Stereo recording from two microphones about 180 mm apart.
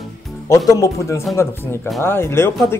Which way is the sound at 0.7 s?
15° left (ahead or behind).